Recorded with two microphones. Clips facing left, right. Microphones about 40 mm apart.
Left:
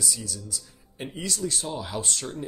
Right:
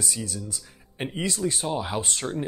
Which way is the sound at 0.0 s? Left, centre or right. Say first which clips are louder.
Right 2 dB; right.